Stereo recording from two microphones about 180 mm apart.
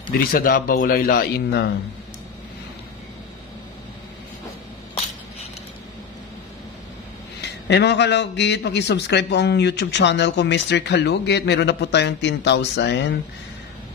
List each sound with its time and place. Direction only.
0.1 s a man's voice: 55° left (ahead or behind)
7.4 s a man's voice: 70° left (ahead or behind)